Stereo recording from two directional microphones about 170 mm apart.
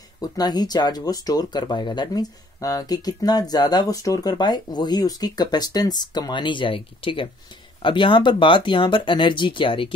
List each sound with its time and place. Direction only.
0.2 s speech: 25° left (ahead or behind)